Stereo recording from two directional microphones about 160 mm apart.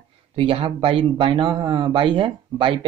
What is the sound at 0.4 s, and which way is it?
Speech, 35° right (ahead or behind).